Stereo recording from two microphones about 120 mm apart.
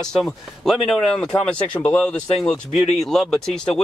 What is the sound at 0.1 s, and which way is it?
Speech, centre (ahead or behind).